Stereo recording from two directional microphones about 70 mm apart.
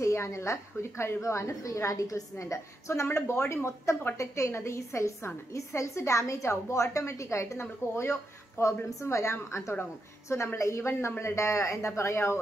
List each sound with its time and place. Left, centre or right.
0.0 s a woman's voice: left